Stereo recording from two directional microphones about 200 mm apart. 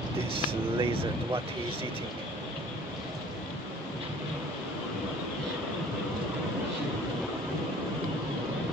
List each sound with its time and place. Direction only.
0.3 s speech: 25° right (ahead or behind)